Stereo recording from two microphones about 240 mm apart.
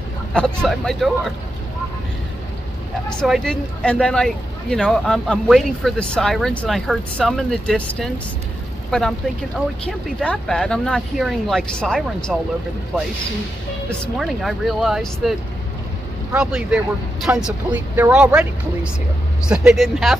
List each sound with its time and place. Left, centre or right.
0.3 s speech: centre
3.1 s speech: centre
13.8 s speech: centre